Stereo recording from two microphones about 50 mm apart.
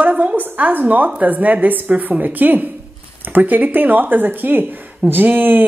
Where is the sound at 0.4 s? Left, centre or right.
Right.